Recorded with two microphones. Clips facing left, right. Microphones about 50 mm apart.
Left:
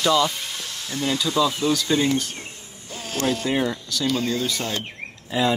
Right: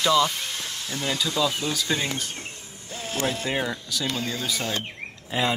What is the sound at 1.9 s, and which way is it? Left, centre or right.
Speech, centre.